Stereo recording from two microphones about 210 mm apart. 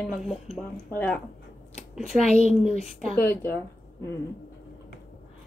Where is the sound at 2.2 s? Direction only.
30° left (ahead or behind).